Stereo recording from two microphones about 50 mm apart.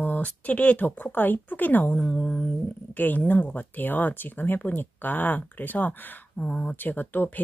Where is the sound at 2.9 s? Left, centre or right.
Left.